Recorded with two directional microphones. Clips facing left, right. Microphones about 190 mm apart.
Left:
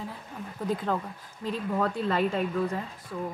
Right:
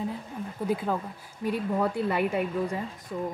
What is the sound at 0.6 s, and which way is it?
A woman's voice, 10° right (ahead or behind).